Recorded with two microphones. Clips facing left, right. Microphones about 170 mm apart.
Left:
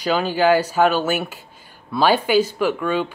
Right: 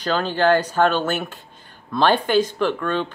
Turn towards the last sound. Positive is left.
turn(degrees=10)  # may be behind; listen again after turning